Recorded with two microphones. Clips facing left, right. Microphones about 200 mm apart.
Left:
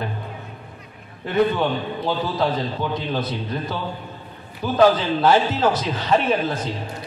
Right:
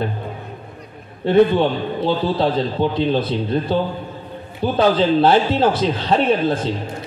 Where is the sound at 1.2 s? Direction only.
30° right (ahead or behind).